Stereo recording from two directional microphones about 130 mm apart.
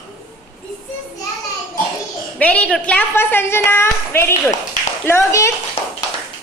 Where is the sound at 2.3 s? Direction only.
10° left (ahead or behind).